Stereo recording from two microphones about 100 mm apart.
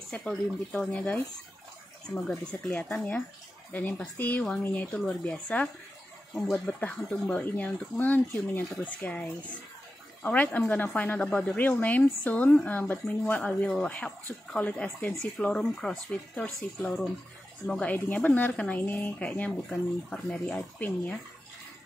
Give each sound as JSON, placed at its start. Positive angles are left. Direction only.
{"t": 0.1, "sound": "a woman's voice", "side_deg": 5}
{"t": 13.4, "sound": "a woman's voice", "side_deg": 5}
{"t": 17.6, "sound": "a woman's voice", "side_deg": 10}